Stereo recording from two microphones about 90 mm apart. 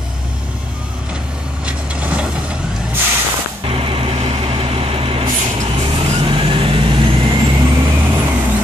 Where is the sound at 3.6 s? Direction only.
90° right; by 7.6 s 70° right (ahead or behind).